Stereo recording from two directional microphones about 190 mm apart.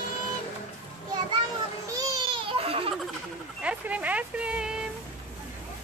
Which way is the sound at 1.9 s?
25° right (ahead or behind).